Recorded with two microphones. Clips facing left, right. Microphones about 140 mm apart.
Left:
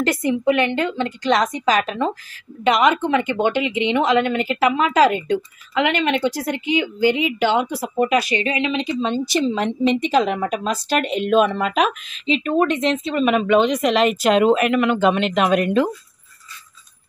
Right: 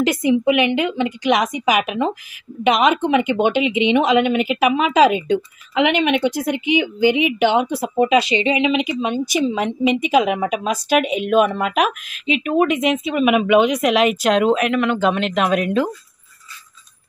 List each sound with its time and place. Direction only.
0.0 s a woman's voice: 15° right (ahead or behind)